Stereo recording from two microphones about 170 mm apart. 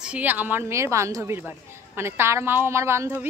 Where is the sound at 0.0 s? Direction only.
10° right (ahead or behind).